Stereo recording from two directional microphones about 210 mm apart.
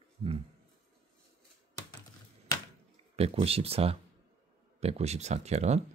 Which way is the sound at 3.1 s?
30° right (ahead or behind).